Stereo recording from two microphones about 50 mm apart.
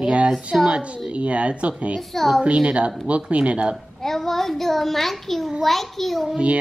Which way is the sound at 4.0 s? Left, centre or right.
Centre.